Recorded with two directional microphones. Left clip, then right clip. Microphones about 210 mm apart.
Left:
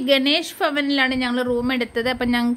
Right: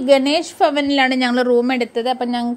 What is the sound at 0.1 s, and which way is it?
A woman's voice, 10° right (ahead or behind).